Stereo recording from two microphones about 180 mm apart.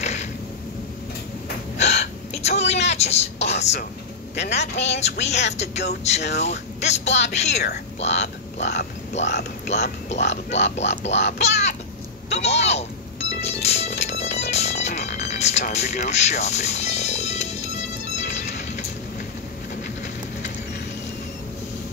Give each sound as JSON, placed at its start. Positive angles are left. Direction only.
{"t": 0.0, "sound": "a sound", "side_deg": 40}
{"t": 1.8, "sound": "gasp", "side_deg": 40}
{"t": 2.9, "sound": "speech", "side_deg": 35}
{"t": 9.2, "sound": "speech", "side_deg": 70}
{"t": 9.7, "sound": "speech", "side_deg": 40}
{"t": 10.1, "sound": "speech", "side_deg": 80}
{"t": 11.2, "sound": "speech", "side_deg": 40}
{"t": 12.3, "sound": "music", "side_deg": 35}
{"t": 19.7, "sound": "a sound", "side_deg": 40}